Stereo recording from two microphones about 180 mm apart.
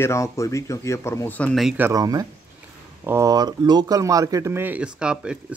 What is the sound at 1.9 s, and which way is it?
Speech, 20° right (ahead or behind).